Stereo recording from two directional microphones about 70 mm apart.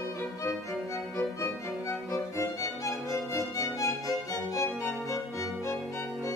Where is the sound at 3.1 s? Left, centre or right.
Left.